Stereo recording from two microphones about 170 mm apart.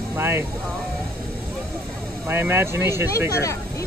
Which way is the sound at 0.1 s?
10° right (ahead or behind).